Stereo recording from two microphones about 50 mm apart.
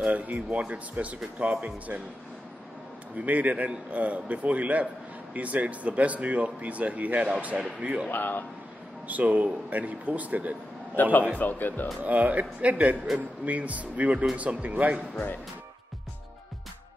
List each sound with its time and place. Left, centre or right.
0.0 s speech: right
3.2 s speech: right
8.1 s speech: left
9.0 s speech: right
11.0 s speech: left
12.0 s speech: right